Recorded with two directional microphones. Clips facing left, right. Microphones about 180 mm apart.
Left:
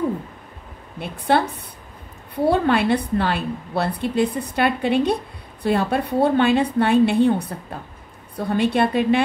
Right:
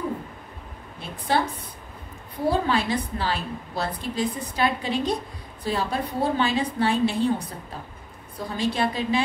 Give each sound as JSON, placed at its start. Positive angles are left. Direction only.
{"t": 0.9, "sound": "a woman's voice", "side_deg": 65}
{"t": 2.4, "sound": "a woman's voice", "side_deg": 65}